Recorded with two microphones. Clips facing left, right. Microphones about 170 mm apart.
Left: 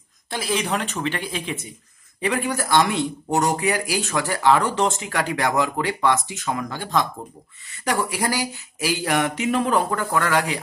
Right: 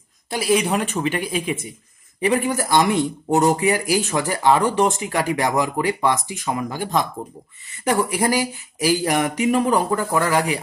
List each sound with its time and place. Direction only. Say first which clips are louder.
0.3 s speech: right 5 dB; 10° right (ahead or behind)